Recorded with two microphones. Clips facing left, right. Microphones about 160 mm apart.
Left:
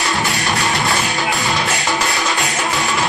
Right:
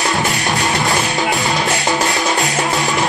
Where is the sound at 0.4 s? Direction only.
20° right (ahead or behind).